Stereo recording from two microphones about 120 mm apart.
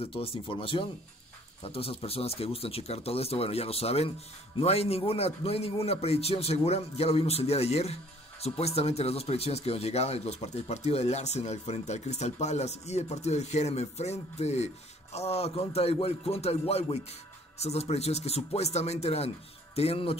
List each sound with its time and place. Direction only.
0.0 s a man's voice: 55° left (ahead or behind)